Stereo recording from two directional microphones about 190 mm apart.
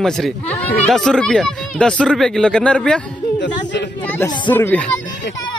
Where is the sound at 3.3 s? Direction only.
70° left (ahead or behind).